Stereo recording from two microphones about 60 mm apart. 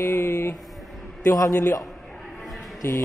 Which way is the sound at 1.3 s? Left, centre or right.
Left.